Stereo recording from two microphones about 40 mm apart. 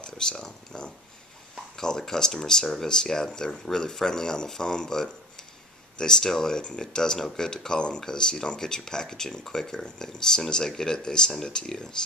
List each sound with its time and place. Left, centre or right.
0.0 s speech: centre